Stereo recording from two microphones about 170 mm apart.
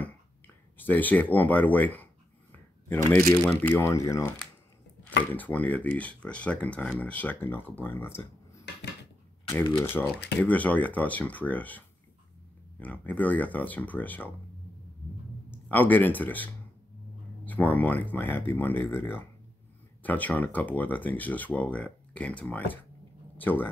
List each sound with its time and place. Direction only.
0.7 s speech: 10° left (ahead or behind)
9.5 s speech: 15° left (ahead or behind)
15.7 s speech: 10° left (ahead or behind)
17.5 s speech: 10° left (ahead or behind)